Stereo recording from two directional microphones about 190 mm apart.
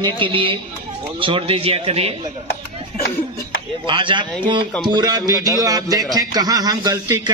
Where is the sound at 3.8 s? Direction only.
25° right (ahead or behind).